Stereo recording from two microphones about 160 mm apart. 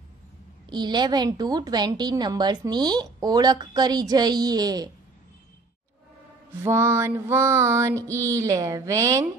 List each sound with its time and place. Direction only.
0.7 s a woman's voice: 25° right (ahead or behind)
6.6 s mantra: 15° right (ahead or behind)